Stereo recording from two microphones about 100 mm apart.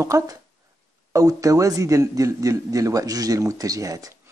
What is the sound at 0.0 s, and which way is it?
A man's voice, 35° right (ahead or behind).